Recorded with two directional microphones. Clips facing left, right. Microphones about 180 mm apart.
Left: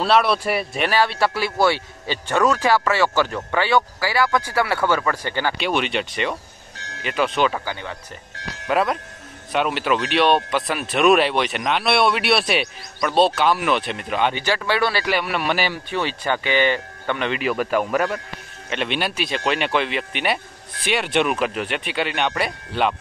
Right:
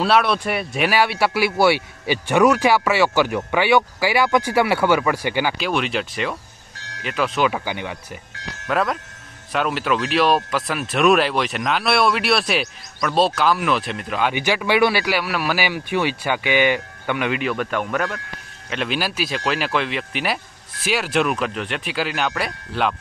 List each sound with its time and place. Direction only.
0.0 s speech: centre (ahead or behind)
5.6 s speech: centre (ahead or behind); by 8.0 s 15° right (ahead or behind)
8.6 s speech: centre (ahead or behind)
14.3 s speech: 15° right (ahead or behind)
17.4 s speech: 5° left (ahead or behind)